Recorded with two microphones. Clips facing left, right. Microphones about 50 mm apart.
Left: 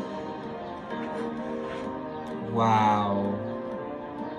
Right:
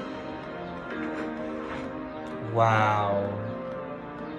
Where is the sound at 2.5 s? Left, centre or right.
Right.